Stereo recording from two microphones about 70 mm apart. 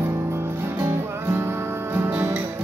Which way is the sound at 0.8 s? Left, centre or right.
Right.